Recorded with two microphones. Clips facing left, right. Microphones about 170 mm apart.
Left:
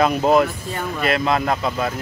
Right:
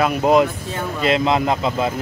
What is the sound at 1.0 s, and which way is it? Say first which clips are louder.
Speech: right 2 dB; 20° right (ahead or behind).